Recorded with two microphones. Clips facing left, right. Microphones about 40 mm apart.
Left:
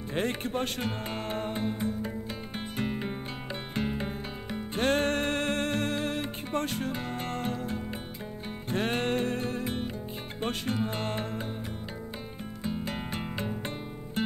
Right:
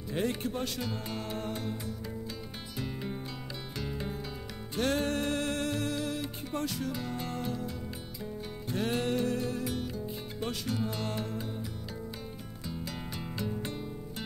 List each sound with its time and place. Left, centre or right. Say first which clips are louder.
0.1 s music: left 2 dB; left
12.6 s music: left 6 dB; left